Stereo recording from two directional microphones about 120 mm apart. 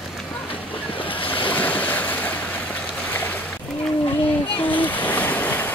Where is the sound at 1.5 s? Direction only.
15° left (ahead or behind).